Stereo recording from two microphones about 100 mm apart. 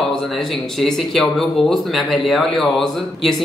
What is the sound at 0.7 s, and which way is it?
Speech, centre (ahead or behind).